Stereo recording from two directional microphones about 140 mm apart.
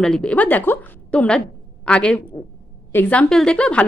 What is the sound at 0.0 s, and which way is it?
A woman's voice, 5° left (ahead or behind).